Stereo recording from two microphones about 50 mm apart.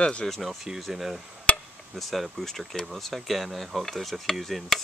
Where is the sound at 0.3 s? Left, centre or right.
Centre.